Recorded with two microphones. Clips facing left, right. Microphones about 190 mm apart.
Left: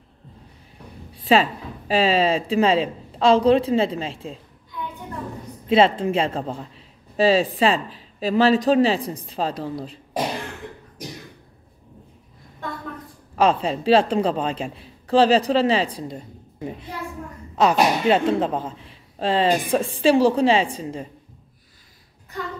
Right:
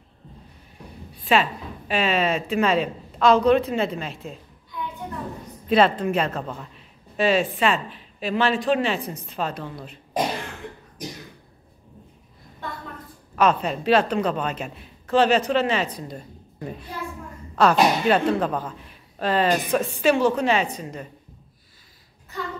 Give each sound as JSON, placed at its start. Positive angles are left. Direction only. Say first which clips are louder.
{"t": 1.2, "sound": "a woman's voice", "louder": "left 3 dB", "side_deg": 35}
{"t": 5.7, "sound": "a woman's voice", "louder": "left 2 dB", "side_deg": 25}
{"t": 13.4, "sound": "a woman's voice", "louder": "left 1 dB", "side_deg": 30}
{"t": 16.5, "sound": "a child's voice", "louder": "left 2 dB", "side_deg": 15}